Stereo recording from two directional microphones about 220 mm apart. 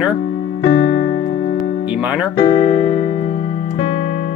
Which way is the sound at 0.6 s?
45° left (ahead or behind).